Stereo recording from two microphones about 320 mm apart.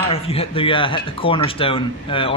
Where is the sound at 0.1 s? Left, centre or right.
Centre.